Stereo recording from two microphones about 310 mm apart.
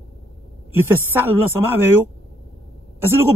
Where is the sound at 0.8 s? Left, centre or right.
Centre.